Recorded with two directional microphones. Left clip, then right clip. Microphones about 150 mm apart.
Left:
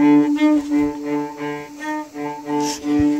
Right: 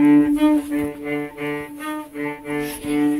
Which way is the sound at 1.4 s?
35° left (ahead or behind).